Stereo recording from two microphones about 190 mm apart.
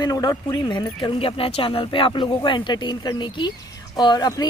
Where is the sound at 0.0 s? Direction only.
20° left (ahead or behind).